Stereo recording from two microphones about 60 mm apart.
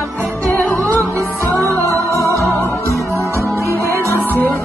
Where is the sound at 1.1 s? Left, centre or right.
Right.